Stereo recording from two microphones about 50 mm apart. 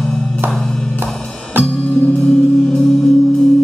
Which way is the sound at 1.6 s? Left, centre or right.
Left.